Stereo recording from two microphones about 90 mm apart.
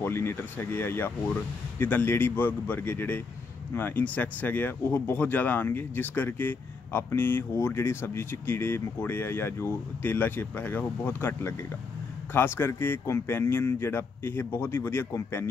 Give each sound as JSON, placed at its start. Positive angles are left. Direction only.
{"t": 0.0, "sound": "speech", "side_deg": 25}